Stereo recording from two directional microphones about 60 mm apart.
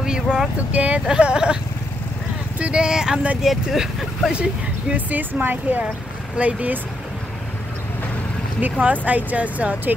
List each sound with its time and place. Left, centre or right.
0.0 s vehicle: centre
0.7 s speech: right
1.0 s speech: centre
2.6 s speech: centre
4.3 s speech: centre
8.5 s speech: right